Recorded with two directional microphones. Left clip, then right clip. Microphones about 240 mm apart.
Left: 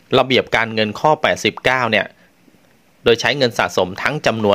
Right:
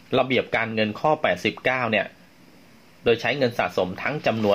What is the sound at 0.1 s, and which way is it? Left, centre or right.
Speech, left.